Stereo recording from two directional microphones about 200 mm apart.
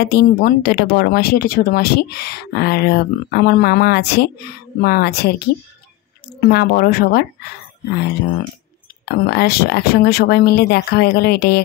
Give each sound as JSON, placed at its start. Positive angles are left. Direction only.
{"t": 0.1, "sound": "speech", "side_deg": 50}
{"t": 9.0, "sound": "speech", "side_deg": 50}